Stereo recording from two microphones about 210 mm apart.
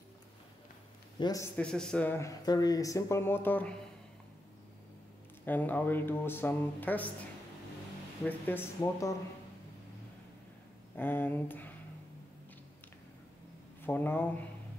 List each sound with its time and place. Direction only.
1.2 s speech: 15° left (ahead or behind)
1.6 s speech: 5° left (ahead or behind)
5.4 s speech: 10° left (ahead or behind)
8.2 s speech: 10° left (ahead or behind)
11.0 s speech: 10° left (ahead or behind)
13.8 s speech: 10° left (ahead or behind)